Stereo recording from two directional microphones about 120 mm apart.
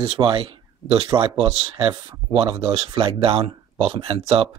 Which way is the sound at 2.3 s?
50° right (ahead or behind).